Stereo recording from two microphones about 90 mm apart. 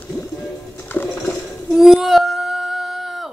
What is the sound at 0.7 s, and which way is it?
Music, 20° left (ahead or behind).